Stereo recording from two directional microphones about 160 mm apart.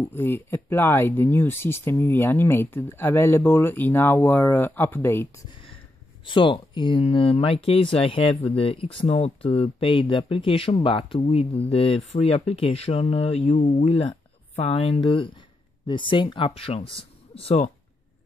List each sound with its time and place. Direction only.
0.0 s speech: 15° left (ahead or behind)
6.2 s speech: 30° left (ahead or behind)